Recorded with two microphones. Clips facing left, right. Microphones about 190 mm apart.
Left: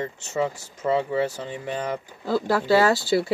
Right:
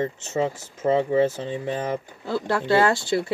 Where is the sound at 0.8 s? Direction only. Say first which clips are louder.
Right 3 dB; 45° right (ahead or behind).